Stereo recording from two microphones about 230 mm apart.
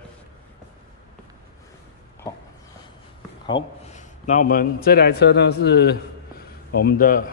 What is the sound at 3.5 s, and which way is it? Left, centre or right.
Speech, left.